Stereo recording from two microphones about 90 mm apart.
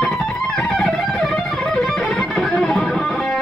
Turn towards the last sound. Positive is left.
turn(degrees=5)  # may be behind; listen again after turning